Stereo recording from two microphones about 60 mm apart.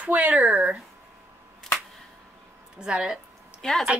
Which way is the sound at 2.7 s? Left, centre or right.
Centre.